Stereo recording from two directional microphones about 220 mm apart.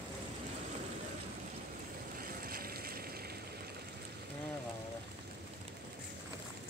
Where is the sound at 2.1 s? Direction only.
40° right (ahead or behind).